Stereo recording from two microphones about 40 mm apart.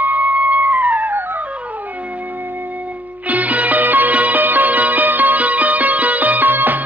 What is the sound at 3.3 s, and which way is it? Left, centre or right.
Music, right.